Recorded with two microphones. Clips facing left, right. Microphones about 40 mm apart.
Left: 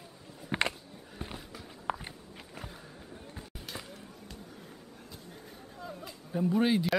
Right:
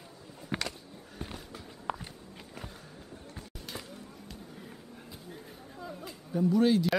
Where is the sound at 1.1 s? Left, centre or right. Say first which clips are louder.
Even; centre.